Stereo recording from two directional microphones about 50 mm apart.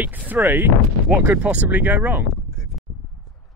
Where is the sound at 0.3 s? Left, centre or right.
Right.